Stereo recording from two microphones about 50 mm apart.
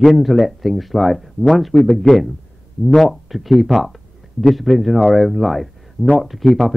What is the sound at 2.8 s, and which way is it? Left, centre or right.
Speech, centre.